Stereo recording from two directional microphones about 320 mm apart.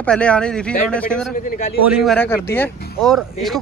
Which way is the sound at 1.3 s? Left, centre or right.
Left.